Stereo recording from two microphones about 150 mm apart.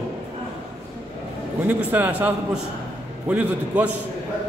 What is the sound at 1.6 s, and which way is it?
Speech, 10° right (ahead or behind).